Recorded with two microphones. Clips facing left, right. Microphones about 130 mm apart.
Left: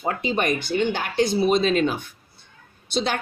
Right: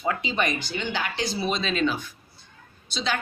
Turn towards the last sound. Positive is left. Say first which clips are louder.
# left 4 dB
turn(degrees=55)  # may be behind; listen again after turning